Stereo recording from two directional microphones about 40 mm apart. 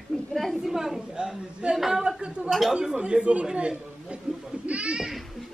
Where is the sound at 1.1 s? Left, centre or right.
Right.